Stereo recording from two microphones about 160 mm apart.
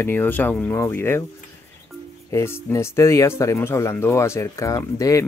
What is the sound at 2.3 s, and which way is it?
Speech, 15° left (ahead or behind).